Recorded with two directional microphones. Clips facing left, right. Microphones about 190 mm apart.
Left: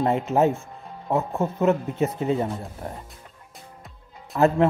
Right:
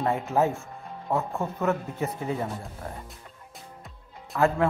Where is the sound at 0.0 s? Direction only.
20° left (ahead or behind).